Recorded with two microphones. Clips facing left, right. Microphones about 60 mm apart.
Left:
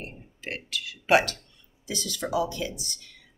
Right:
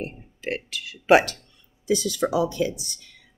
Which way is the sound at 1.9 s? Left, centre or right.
Centre.